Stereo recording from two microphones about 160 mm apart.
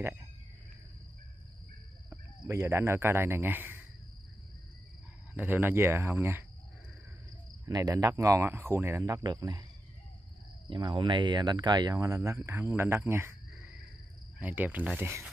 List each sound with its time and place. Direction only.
2.0 s speech: 15° right (ahead or behind)
5.3 s speech: 10° right (ahead or behind)
7.6 s speech: 20° right (ahead or behind)
10.7 s speech: 30° right (ahead or behind)